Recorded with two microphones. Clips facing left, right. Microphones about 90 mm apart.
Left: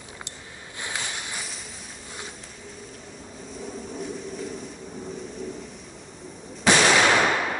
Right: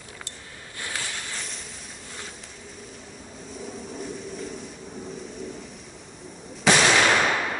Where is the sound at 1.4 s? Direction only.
5° left (ahead or behind).